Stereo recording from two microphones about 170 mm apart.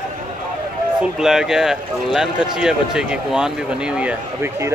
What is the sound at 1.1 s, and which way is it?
A man's voice, 5° right (ahead or behind).